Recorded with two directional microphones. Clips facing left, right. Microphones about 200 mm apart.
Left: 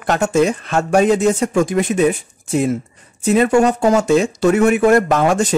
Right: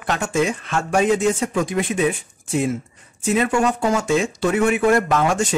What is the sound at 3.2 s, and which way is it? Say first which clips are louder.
Speech: left 6 dB; 40° left (ahead or behind).